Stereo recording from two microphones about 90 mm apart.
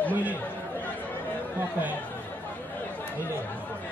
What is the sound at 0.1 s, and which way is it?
Speech, 20° right (ahead or behind).